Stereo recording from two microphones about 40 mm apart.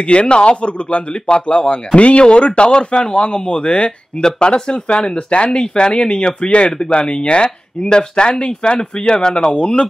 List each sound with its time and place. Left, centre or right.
0.0 s a man's voice: left